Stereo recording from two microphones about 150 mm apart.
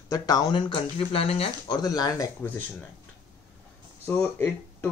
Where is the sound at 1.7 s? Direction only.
25° left (ahead or behind).